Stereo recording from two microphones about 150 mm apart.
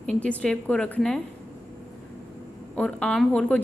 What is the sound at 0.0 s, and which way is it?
Speech, 10° left (ahead or behind).